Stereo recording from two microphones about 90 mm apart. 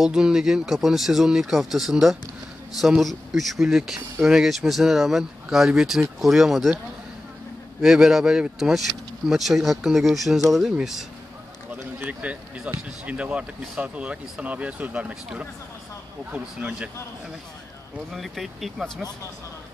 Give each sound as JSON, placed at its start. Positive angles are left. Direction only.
{"t": 0.0, "sound": "speech", "side_deg": -5}
{"t": 7.8, "sound": "speech", "side_deg": -5}
{"t": 11.7, "sound": "speech", "side_deg": -15}
{"t": 18.1, "sound": "speech", "side_deg": 0}